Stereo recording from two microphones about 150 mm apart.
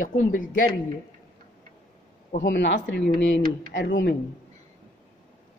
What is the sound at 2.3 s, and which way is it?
Speech, 55° left (ahead or behind).